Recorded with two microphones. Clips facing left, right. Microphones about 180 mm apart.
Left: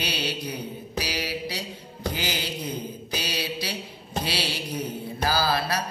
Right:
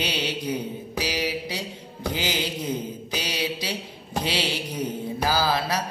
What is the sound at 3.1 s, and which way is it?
Mantra, 15° right (ahead or behind).